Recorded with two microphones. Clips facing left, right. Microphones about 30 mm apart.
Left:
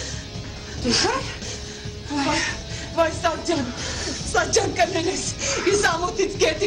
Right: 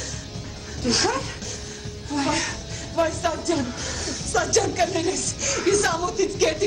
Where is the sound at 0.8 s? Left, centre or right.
Centre.